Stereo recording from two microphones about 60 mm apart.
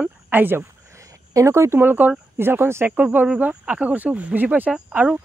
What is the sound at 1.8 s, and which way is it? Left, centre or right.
Speech, right.